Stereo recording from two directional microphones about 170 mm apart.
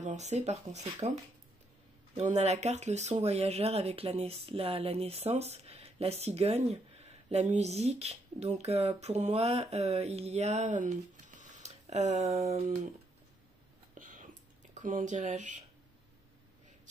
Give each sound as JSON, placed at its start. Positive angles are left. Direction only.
{"t": 0.0, "sound": "speech", "side_deg": -40}
{"t": 2.1, "sound": "speech", "side_deg": -40}
{"t": 13.9, "sound": "a sound", "side_deg": -50}